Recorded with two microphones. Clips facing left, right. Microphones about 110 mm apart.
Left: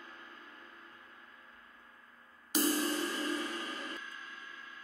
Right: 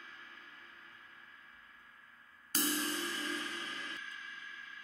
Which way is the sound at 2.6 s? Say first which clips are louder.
Left 5 dB; 45° left (ahead or behind).